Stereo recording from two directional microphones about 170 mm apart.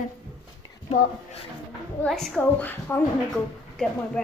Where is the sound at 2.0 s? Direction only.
Centre (ahead or behind).